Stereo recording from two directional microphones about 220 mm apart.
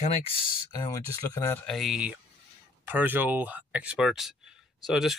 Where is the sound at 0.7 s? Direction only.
15° left (ahead or behind).